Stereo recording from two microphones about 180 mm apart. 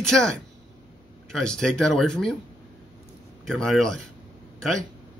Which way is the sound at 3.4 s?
5° left (ahead or behind).